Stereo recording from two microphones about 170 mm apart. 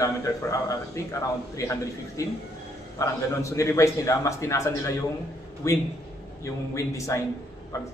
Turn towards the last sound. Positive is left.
turn(degrees=20)  # may be behind; listen again after turning